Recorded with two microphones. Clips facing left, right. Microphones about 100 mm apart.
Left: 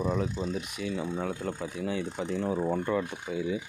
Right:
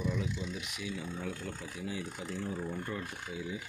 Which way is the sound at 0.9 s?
70° left (ahead or behind).